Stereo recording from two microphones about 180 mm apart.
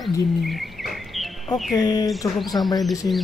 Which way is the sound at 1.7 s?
20° left (ahead or behind).